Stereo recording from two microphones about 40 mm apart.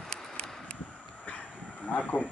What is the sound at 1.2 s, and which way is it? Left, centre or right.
Dog, left.